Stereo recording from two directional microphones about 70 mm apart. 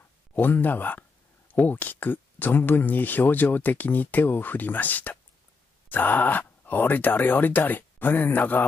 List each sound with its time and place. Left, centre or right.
0.4 s speech: left